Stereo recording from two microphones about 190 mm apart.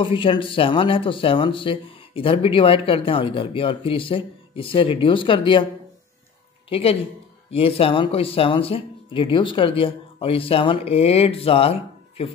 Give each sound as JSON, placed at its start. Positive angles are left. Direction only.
{"t": 0.0, "sound": "speech", "side_deg": 25}
{"t": 6.7, "sound": "speech", "side_deg": 30}